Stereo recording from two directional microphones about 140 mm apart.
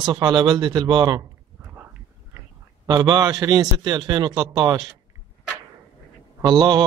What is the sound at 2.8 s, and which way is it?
A man's voice, 30° right (ahead or behind).